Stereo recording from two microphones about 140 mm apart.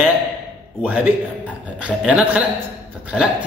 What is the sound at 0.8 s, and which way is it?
A man's voice, 10° right (ahead or behind).